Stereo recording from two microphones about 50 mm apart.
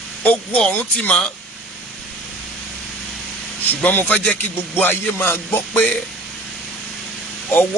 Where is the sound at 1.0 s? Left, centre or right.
Left.